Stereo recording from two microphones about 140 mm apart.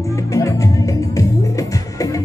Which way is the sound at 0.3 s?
20° left (ahead or behind).